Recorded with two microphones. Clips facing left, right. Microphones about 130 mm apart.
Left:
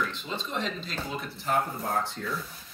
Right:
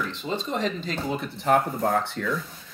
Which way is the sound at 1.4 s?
85° right.